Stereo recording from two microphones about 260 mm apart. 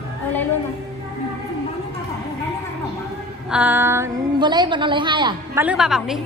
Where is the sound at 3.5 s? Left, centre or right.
Centre.